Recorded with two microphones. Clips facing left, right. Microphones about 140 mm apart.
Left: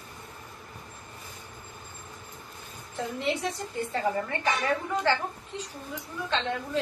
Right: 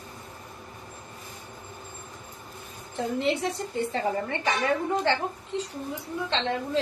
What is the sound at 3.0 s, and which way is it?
A woman's voice, 25° right (ahead or behind).